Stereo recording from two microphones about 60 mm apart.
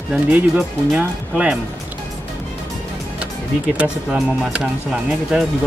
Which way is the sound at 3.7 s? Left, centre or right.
Centre.